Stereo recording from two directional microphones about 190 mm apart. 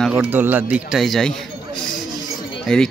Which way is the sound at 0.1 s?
10° right (ahead or behind).